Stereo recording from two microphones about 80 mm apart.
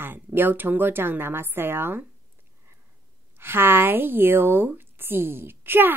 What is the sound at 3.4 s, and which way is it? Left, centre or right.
Speech, right.